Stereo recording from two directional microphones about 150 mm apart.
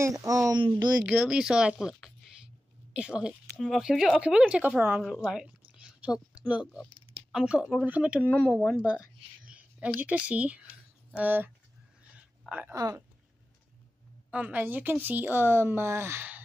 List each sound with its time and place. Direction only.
0.0 s speech: 20° right (ahead or behind)
1.2 s speech: 5° right (ahead or behind)
12.7 s speech: 25° right (ahead or behind)
14.3 s speech: 10° right (ahead or behind)